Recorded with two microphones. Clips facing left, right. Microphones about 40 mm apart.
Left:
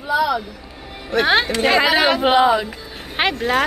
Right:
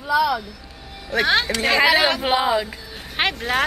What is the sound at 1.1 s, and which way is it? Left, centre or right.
Speech, centre.